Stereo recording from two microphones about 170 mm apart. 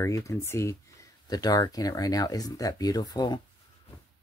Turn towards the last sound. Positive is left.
turn(degrees=20)  # may be behind; listen again after turning